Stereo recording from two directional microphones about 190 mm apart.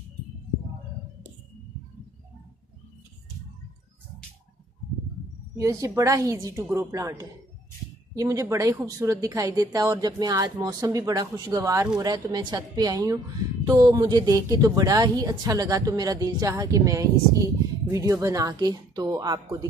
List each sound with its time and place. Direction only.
5.6 s a woman's voice: 15° right (ahead or behind)